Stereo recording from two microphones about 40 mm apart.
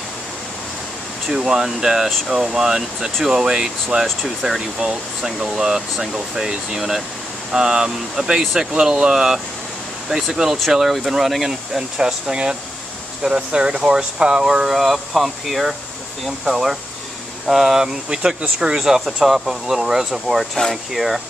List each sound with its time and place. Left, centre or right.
1.3 s speech: centre
4.2 s speech: centre